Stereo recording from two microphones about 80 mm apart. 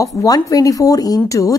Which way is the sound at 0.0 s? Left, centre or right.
Left.